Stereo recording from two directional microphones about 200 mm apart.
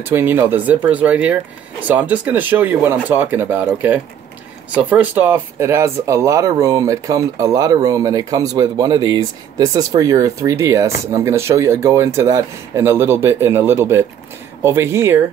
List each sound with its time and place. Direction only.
0.1 s speech: 10° right (ahead or behind)